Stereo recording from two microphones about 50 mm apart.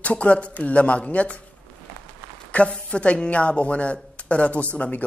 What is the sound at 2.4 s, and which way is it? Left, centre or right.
Speech, left.